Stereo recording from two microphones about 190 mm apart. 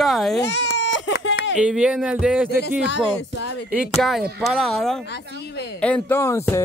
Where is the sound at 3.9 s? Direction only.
Centre (ahead or behind).